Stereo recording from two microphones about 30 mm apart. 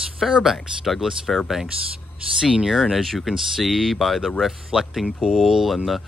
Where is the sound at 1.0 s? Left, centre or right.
Right.